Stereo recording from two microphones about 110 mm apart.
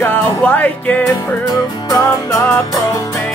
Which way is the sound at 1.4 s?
35° left (ahead or behind).